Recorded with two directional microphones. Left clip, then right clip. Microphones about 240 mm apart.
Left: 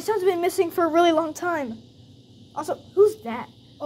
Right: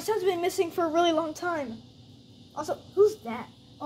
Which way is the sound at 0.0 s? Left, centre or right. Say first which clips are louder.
Left 5 dB; centre.